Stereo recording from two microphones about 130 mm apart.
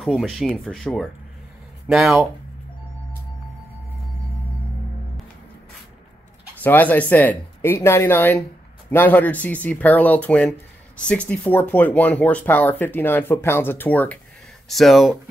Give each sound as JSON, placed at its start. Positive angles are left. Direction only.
{"t": 0.0, "sound": "speech", "side_deg": 0}
{"t": 1.9, "sound": "speech", "side_deg": -5}
{"t": 6.6, "sound": "speech", "side_deg": 15}
{"t": 14.7, "sound": "speech", "side_deg": 0}